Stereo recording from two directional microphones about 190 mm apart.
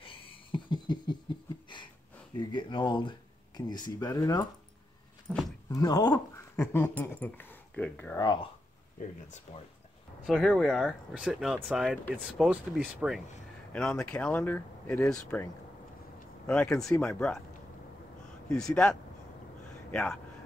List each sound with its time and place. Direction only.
0.0 s a sound: 25° left (ahead or behind)
2.3 s speech: 25° left (ahead or behind)
5.3 s speech: 5° right (ahead or behind)
5.7 s speech: 20° left (ahead or behind)
8.2 s speech: 20° left (ahead or behind)
9.5 s speech: 30° left (ahead or behind)
10.2 s speech: centre (ahead or behind)
18.5 s a man's voice: 5° left (ahead or behind)